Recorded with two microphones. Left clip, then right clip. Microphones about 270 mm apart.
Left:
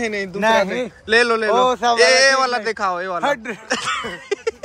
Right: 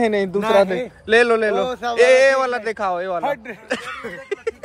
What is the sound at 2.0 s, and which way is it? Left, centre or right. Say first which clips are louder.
Speech: right 2 dB; centre.